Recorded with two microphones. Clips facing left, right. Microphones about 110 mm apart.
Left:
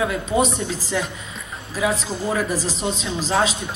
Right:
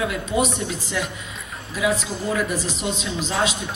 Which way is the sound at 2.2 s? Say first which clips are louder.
Left 1 dB; 35° left (ahead or behind).